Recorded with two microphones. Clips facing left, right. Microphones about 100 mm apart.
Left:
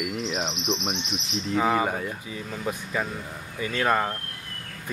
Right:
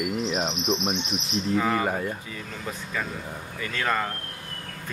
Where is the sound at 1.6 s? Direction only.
10° left (ahead or behind).